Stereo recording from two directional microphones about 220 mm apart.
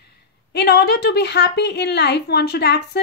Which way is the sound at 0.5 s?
50° left (ahead or behind).